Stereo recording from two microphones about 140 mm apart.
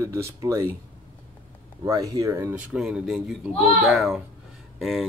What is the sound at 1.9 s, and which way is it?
Speech, 25° right (ahead or behind).